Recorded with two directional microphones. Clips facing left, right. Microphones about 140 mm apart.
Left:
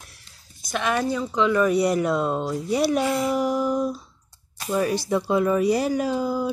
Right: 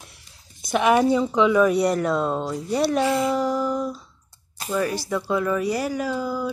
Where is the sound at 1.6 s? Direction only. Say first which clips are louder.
Right 1 dB; centre (ahead or behind).